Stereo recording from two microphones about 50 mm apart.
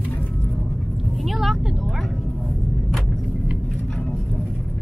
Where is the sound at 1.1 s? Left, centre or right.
Centre.